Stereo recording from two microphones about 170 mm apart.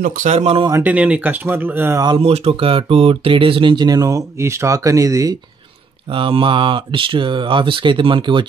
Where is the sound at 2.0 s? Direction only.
30° right (ahead or behind).